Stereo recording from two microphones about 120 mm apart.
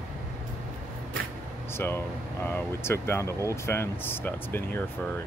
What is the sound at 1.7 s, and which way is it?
Speech, 20° left (ahead or behind).